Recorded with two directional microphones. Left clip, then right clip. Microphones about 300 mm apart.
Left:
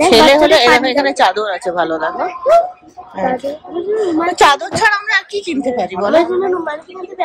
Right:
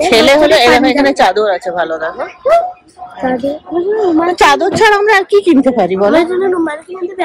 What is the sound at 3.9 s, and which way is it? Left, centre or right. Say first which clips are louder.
A woman's voice: right 2 dB; centre.